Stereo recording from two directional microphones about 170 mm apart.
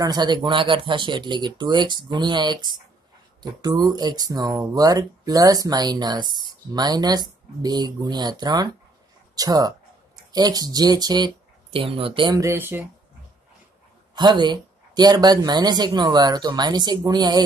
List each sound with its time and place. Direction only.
0.0 s speech: 25° right (ahead or behind)
12.4 s speech: 15° right (ahead or behind)
14.1 s speech: 25° right (ahead or behind)